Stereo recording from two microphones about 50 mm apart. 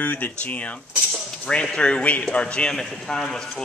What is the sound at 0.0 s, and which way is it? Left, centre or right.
Speech, left.